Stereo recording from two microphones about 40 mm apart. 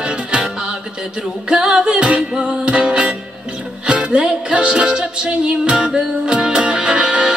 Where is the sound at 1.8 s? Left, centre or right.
Right.